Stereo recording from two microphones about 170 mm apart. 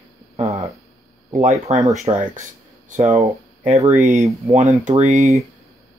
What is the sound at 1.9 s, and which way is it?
Speech, 40° right (ahead or behind).